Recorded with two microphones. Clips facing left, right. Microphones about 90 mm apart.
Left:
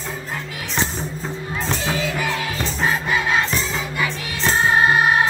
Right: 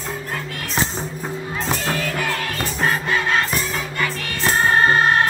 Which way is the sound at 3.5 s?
10° right (ahead or behind).